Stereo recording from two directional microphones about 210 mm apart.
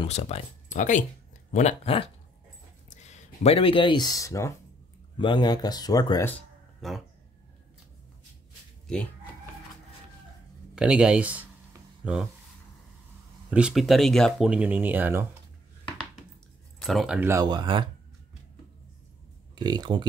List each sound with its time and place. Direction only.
0.0 s speech: 30° left (ahead or behind); by 7.0 s 5° left (ahead or behind)
8.8 s speech: 5° left (ahead or behind)
10.7 s speech: 5° right (ahead or behind)
13.5 s speech: 5° right (ahead or behind)
16.8 s speech: centre (ahead or behind); by 17.8 s 20° right (ahead or behind)
19.5 s speech: 20° right (ahead or behind)